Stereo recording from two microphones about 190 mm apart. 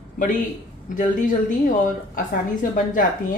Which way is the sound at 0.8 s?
45° left (ahead or behind).